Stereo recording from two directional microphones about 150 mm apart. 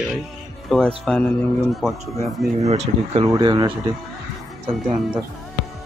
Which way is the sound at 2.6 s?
45° right (ahead or behind).